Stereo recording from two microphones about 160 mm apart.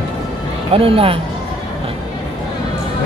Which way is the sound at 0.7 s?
35° right (ahead or behind).